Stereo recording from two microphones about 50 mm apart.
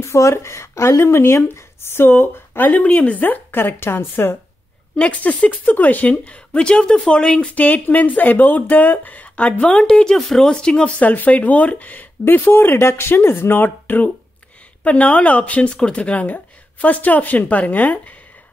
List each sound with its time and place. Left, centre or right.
0.0 s speech: left
4.9 s speech: left
7.5 s speech: left; by 10.1 s centre
10.1 s speech: centre
10.5 s speech: centre
10.9 s speech: left
14.8 s speech: left
15.7 s speech: centre; by 18.1 s left